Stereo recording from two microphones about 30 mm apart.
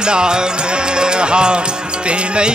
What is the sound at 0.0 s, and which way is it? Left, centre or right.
Music, right.